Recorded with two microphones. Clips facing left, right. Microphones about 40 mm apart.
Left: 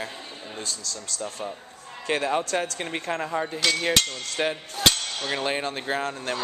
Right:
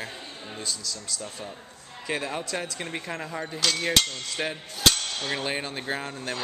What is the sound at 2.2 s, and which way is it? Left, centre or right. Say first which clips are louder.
Speech: left 6 dB; left.